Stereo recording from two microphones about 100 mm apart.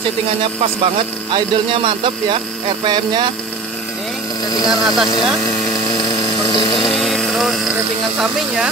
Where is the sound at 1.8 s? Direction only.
55° right (ahead or behind).